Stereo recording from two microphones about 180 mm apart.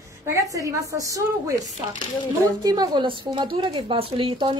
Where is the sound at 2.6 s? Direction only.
20° right (ahead or behind).